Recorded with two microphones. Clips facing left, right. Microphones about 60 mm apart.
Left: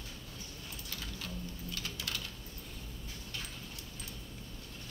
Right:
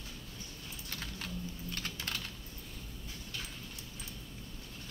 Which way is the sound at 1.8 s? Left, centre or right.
Right.